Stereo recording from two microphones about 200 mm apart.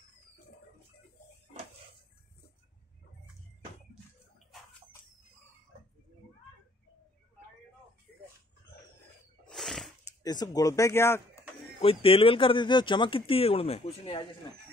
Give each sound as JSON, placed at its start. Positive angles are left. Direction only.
{"t": 9.5, "sound": "a sound", "side_deg": 0}
{"t": 10.0, "sound": "speech", "side_deg": 20}
{"t": 11.8, "sound": "speech", "side_deg": 30}